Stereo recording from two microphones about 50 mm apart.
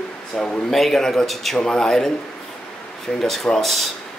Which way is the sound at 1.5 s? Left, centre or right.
Centre.